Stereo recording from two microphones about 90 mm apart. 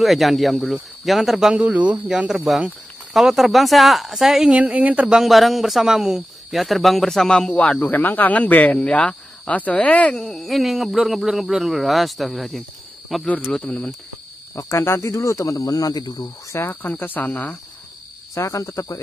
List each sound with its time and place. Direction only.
0.0 s speech: centre (ahead or behind)
4.6 s speech: 15° right (ahead or behind); by 10.2 s 15° left (ahead or behind)
10.2 s speech: centre (ahead or behind)
13.6 s speech: 15° left (ahead or behind)
14.5 s speech: 35° left (ahead or behind)
16.5 s speech: 30° left (ahead or behind)
18.3 s speech: 35° left (ahead or behind)